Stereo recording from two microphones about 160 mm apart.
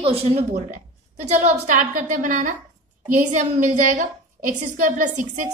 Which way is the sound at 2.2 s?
50° right (ahead or behind).